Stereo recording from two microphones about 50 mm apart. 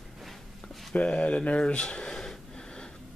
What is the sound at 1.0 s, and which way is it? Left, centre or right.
Speech, left.